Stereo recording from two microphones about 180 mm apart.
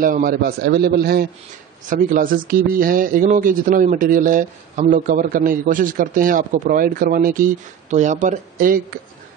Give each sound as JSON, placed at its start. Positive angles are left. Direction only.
{"t": 0.0, "sound": "a man's voice", "side_deg": -50}
{"t": 1.9, "sound": "speech", "side_deg": -50}